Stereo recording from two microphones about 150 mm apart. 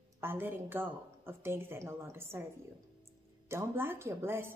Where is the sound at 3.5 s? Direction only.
15° right (ahead or behind).